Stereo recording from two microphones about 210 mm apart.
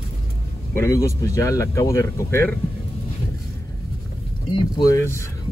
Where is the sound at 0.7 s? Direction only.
15° left (ahead or behind).